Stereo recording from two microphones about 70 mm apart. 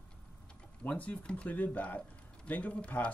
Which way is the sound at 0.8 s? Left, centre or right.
Left.